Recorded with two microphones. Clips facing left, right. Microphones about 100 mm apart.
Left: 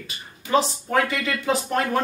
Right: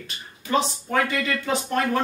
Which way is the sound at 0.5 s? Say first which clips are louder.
Left 2 dB; 5° left (ahead or behind).